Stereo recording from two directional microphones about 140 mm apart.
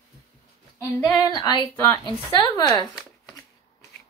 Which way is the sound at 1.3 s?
20° left (ahead or behind).